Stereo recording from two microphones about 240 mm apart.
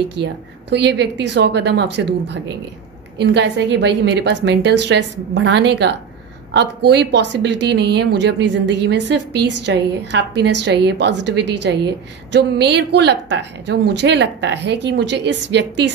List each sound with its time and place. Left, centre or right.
0.2 s speech: right